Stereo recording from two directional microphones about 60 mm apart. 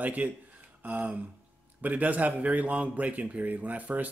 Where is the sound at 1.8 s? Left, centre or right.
Right.